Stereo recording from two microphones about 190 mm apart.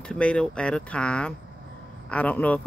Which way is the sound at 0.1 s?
5° left (ahead or behind).